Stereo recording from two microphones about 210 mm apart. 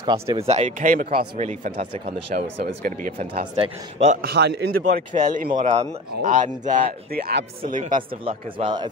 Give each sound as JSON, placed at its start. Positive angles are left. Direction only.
{"t": 0.0, "sound": "speech", "side_deg": -20}
{"t": 3.5, "sound": "a man's voice", "side_deg": -30}
{"t": 4.2, "sound": "a man's voice", "side_deg": -50}
{"t": 5.1, "sound": "speech", "side_deg": -35}
{"t": 8.3, "sound": "a man's voice", "side_deg": -25}